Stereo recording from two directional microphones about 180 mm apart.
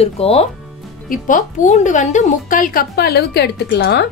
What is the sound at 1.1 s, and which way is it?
A woman's voice, 45° left (ahead or behind).